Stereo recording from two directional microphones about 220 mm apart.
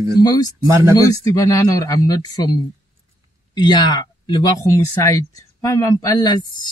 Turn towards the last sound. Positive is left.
turn(degrees=20)  # may be behind; listen again after turning